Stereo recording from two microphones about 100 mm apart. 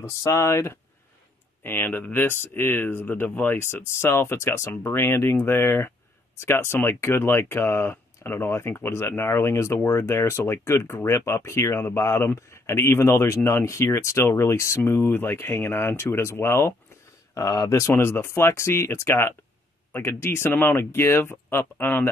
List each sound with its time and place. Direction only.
0.2 s speech: 30° left (ahead or behind)
17.3 s speech: 35° left (ahead or behind)